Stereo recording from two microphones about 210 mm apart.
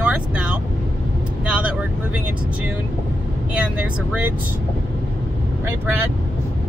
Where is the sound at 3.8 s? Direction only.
5° right (ahead or behind).